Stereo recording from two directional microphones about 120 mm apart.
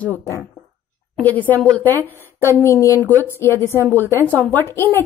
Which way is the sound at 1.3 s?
15° left (ahead or behind).